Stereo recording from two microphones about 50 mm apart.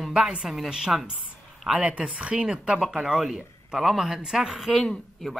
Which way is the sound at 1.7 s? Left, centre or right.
Right.